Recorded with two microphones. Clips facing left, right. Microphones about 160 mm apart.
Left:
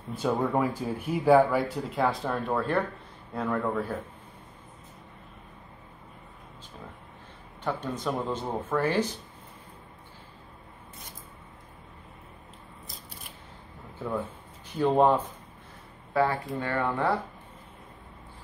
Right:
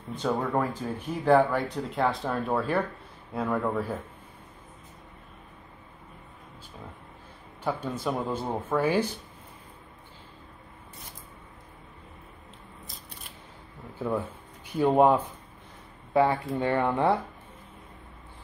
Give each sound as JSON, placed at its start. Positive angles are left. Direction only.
{"t": 0.1, "sound": "speech", "side_deg": 5}
{"t": 7.6, "sound": "speech", "side_deg": -10}
{"t": 14.8, "sound": "speech", "side_deg": -15}
{"t": 16.1, "sound": "speech", "side_deg": -20}